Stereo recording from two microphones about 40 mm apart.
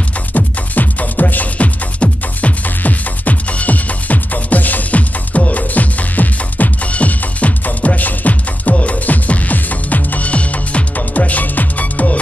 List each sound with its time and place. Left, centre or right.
0.3 s music: left